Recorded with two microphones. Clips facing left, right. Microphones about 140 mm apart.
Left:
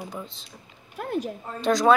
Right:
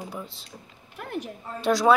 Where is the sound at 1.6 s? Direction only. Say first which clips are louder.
Left 1 dB; 5° right (ahead or behind).